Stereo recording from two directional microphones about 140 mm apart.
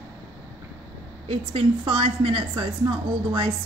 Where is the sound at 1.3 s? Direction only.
40° right (ahead or behind).